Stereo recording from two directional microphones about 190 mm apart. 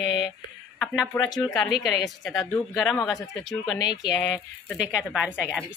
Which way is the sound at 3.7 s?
20° left (ahead or behind).